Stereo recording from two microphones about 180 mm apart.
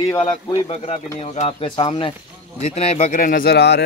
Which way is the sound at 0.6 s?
40° left (ahead or behind).